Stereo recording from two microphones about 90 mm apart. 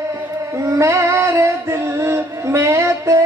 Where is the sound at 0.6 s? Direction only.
35° right (ahead or behind).